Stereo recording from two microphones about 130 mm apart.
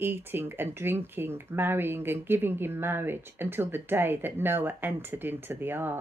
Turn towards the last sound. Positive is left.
turn(degrees=-15)  # may be behind; listen again after turning